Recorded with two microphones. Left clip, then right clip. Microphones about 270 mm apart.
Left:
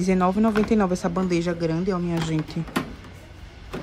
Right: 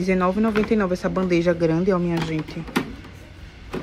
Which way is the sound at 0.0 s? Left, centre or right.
Centre.